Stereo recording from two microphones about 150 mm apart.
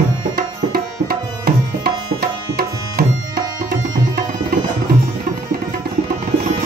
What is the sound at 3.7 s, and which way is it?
Music, 75° right (ahead or behind).